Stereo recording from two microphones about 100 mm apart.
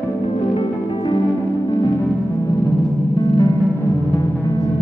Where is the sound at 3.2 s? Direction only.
35° left (ahead or behind).